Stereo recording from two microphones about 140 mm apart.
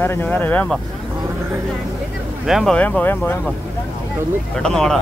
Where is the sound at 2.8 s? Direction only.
10° left (ahead or behind).